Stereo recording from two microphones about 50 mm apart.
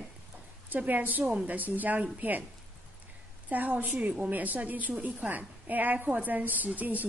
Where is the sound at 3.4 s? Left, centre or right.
Right.